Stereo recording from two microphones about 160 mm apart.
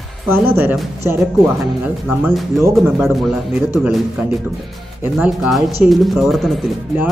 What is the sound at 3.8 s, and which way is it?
Speech, 5° right (ahead or behind).